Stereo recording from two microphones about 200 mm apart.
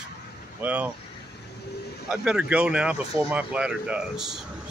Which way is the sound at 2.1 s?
Centre (ahead or behind).